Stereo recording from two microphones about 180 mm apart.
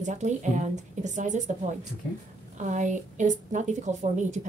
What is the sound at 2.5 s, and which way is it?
A woman's voice, 45° right (ahead or behind).